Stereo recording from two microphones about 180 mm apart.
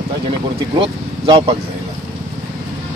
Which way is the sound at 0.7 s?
30° right (ahead or behind).